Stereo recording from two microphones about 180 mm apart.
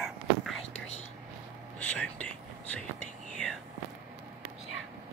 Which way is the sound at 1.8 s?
5° left (ahead or behind).